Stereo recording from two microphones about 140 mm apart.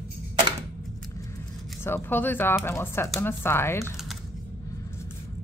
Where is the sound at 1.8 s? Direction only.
15° left (ahead or behind).